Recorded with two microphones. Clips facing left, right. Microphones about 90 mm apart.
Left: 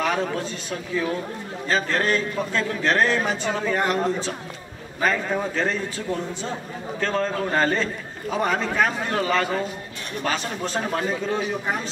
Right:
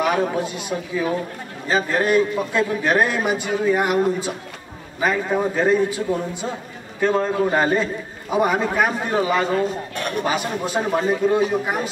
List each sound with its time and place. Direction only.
0.0 s a man's voice: 15° right (ahead or behind)
9.9 s a sound: 60° right (ahead or behind)
10.2 s a man's voice: 10° right (ahead or behind)